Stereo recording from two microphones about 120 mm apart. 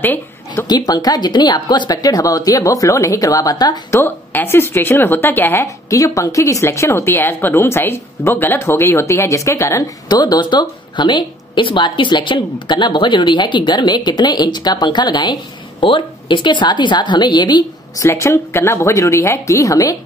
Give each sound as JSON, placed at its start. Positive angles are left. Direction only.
{"t": 0.0, "sound": "a sound", "side_deg": 15}
{"t": 0.7, "sound": "speech", "side_deg": 35}
{"t": 3.9, "sound": "a woman's voice", "side_deg": 20}
{"t": 18.0, "sound": "a woman's voice", "side_deg": 25}